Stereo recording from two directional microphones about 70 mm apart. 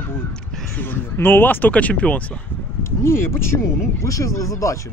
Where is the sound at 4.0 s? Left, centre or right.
Left.